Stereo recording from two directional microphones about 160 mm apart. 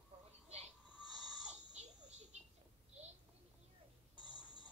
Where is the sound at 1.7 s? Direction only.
45° right (ahead or behind).